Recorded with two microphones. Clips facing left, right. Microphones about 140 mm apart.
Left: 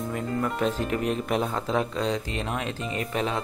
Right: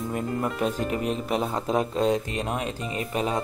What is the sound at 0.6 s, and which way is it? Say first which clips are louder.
Speech: even; 10° right (ahead or behind).